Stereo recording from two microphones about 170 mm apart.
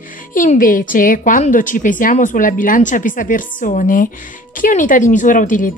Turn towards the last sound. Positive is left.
turn(degrees=50)  # may be behind; listen again after turning